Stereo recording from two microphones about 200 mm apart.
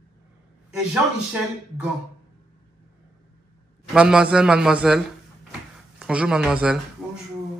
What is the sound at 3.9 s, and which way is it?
Speech, 5° right (ahead or behind).